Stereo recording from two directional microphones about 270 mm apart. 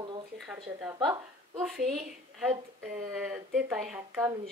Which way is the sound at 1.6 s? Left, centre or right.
Centre.